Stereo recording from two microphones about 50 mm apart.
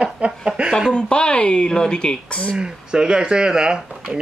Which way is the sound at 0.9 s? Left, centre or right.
Centre.